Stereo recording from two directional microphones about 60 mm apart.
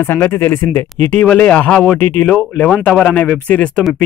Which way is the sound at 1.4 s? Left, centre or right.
Left.